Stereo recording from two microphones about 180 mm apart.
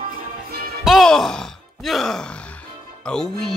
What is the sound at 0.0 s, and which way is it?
Music, 55° right (ahead or behind).